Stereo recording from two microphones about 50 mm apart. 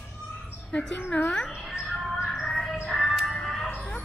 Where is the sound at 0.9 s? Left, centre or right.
Left.